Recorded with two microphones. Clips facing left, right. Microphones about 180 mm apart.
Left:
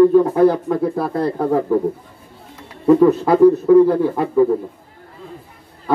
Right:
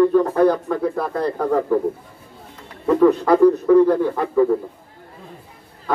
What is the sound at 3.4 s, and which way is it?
A man's voice, 20° left (ahead or behind).